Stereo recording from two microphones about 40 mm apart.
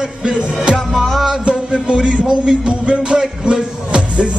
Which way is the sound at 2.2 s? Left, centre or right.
Right.